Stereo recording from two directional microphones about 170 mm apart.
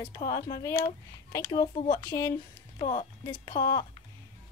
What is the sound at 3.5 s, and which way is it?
Speech, 55° left (ahead or behind).